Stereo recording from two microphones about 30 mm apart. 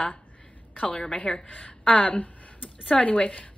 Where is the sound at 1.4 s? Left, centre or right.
Left.